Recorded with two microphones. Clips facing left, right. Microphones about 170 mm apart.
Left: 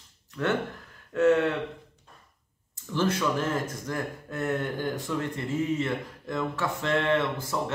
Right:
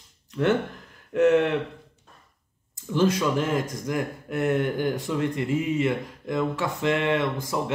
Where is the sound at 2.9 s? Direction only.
15° right (ahead or behind).